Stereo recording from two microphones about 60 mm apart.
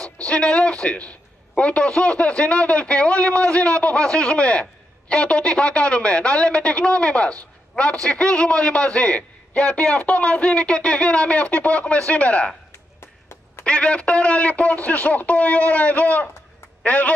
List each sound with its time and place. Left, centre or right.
0.3 s a man's voice: centre
13.7 s a man's voice: centre